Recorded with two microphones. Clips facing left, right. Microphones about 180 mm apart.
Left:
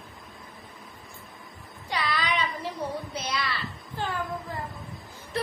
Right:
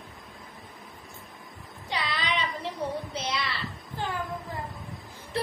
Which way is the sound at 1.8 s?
25° right (ahead or behind).